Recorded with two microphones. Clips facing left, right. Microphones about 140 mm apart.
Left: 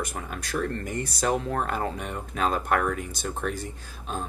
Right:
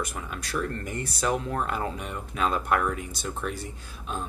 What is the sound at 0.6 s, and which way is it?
Speech, 35° left (ahead or behind).